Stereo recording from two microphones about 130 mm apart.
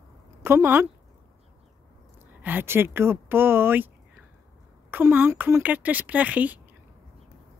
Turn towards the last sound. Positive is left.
turn(degrees=-10)  # may be behind; listen again after turning